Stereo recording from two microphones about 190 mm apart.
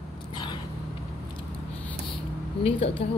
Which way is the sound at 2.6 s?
30° left (ahead or behind).